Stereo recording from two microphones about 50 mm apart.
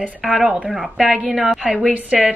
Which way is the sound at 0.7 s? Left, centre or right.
Centre.